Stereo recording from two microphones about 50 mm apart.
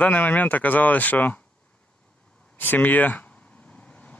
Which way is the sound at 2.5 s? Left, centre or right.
Left.